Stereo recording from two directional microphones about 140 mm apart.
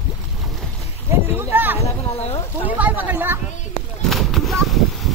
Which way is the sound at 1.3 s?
15° right (ahead or behind).